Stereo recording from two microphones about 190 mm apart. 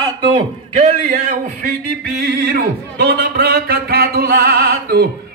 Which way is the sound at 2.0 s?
55° right (ahead or behind).